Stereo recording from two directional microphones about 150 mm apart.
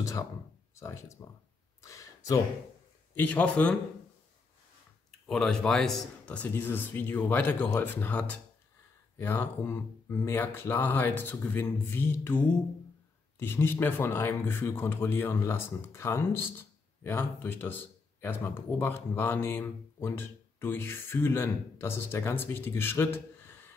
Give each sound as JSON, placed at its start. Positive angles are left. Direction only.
{"t": 0.7, "sound": "speech", "side_deg": 20}
{"t": 1.8, "sound": "a sound", "side_deg": 20}
{"t": 3.2, "sound": "speech", "side_deg": 10}
{"t": 5.3, "sound": "speech", "side_deg": 5}